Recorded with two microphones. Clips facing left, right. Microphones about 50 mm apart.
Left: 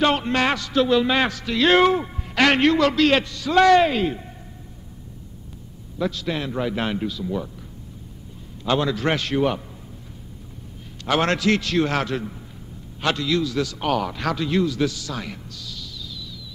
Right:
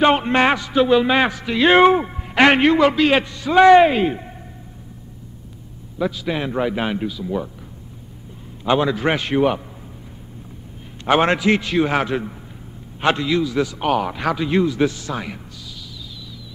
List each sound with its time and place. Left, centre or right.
0.0 s speech: right
5.9 s a man's voice: centre
8.6 s a man's voice: centre
11.1 s speech: centre